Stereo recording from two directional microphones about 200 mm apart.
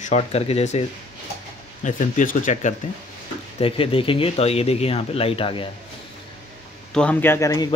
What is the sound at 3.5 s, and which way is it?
Speech, 30° left (ahead or behind).